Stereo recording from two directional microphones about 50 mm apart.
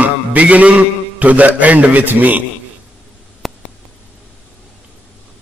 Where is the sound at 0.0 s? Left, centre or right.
Right.